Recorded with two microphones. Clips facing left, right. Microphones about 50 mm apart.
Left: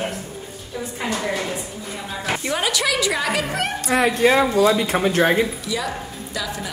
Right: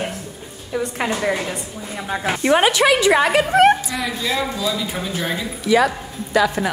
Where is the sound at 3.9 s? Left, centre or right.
Left.